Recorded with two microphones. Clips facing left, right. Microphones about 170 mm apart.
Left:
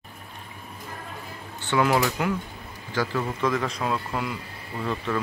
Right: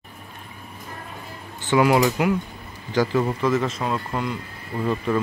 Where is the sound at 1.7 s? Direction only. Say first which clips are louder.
Right 4 dB; 15° right (ahead or behind).